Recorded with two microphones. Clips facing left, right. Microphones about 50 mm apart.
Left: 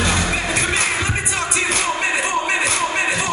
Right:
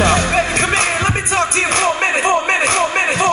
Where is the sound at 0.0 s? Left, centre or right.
Right.